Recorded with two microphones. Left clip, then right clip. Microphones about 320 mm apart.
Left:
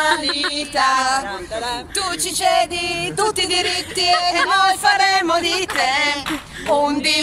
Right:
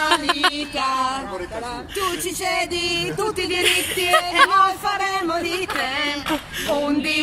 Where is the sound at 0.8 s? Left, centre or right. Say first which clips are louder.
Left 8 dB; left.